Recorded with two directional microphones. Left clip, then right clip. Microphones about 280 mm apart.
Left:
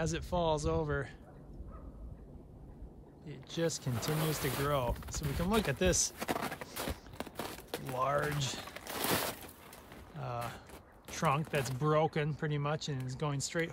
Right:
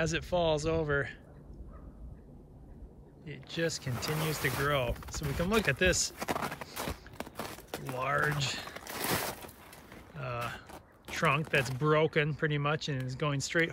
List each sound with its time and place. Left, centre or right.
0.0 s speech: centre
3.3 s speech: centre
8.9 s a sound: centre
10.1 s speech: centre